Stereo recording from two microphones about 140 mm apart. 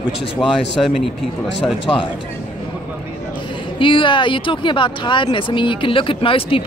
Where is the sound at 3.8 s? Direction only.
35° left (ahead or behind).